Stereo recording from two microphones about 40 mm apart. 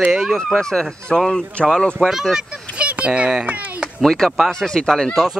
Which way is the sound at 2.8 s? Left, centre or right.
Right.